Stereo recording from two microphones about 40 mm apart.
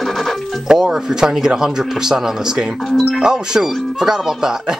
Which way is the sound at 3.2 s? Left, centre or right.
Centre.